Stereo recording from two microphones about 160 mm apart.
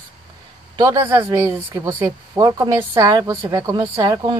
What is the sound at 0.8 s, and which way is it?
Speech, 15° right (ahead or behind).